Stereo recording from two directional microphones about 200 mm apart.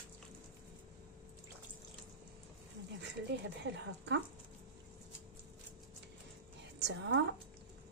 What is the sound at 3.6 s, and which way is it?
Speech, 60° right (ahead or behind).